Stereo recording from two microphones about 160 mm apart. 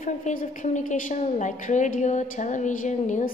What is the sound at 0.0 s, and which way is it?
A woman's voice, 55° left (ahead or behind).